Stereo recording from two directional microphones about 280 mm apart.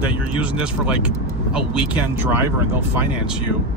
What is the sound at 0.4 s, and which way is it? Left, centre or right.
Speech, centre.